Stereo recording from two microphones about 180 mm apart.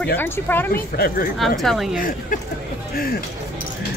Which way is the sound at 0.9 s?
55° left (ahead or behind).